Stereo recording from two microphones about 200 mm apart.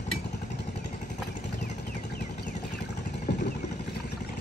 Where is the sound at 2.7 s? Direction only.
55° left (ahead or behind).